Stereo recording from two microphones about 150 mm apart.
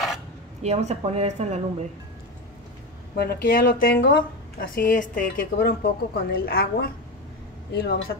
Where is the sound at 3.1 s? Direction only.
80° left.